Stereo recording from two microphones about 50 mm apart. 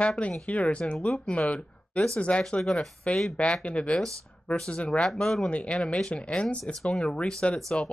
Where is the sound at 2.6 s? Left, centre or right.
Centre.